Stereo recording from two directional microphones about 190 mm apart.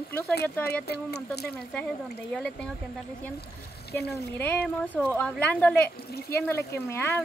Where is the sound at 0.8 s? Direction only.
60° left (ahead or behind).